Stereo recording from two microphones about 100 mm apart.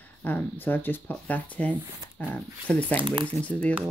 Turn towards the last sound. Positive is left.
turn(degrees=15)  # may be behind; listen again after turning